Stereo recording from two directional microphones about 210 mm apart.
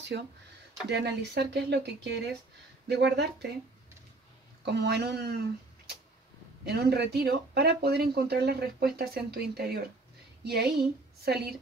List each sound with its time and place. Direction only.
0.1 s speech: 50° right (ahead or behind)
4.6 s speech: 55° right (ahead or behind)
6.6 s speech: 50° right (ahead or behind)